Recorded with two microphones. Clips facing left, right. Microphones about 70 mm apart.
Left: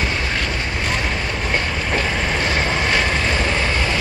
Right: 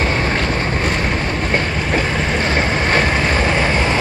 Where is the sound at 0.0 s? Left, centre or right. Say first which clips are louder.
Right 4 dB; right.